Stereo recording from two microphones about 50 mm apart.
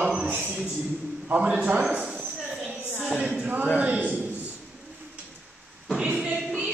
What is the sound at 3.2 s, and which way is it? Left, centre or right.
Speech, centre.